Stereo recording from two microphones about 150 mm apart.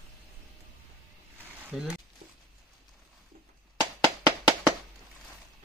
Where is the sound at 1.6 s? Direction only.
5° right (ahead or behind).